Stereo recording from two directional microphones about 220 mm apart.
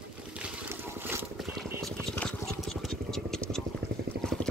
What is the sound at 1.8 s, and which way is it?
Vehicle, 5° left (ahead or behind).